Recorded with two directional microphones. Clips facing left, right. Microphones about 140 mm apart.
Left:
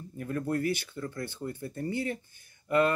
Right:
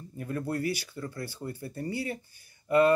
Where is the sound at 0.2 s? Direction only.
30° right (ahead or behind).